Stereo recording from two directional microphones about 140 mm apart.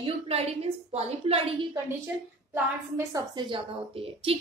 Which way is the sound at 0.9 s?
45° right (ahead or behind).